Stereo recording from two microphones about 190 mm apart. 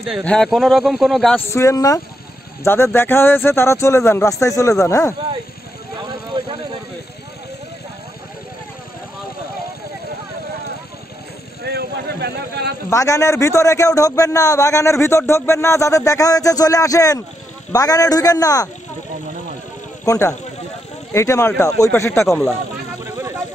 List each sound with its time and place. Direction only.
0.0 s speech: centre (ahead or behind)
1.5 s a man's voice: 15° left (ahead or behind)
6.3 s a sound: 20° right (ahead or behind)
11.6 s a sound: 60° right (ahead or behind)
12.9 s a man's voice: 15° left (ahead or behind)
20.1 s a man's voice: 15° left (ahead or behind)